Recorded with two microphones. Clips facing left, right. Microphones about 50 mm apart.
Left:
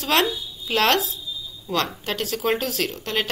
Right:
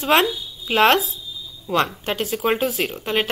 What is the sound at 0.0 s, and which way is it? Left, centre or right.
Speech, centre.